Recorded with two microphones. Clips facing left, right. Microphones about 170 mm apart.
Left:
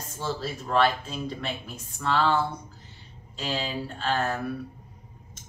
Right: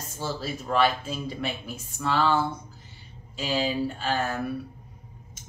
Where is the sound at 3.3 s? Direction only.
5° right (ahead or behind).